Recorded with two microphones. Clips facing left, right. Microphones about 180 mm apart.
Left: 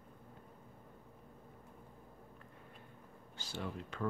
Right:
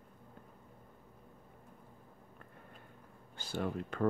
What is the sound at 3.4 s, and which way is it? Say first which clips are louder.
Speech: right 6 dB; 55° right (ahead or behind).